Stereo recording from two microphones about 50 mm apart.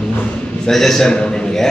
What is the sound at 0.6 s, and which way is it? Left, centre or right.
A man's voice, centre.